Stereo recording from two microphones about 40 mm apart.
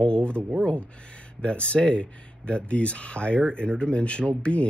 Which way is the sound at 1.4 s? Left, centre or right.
Left.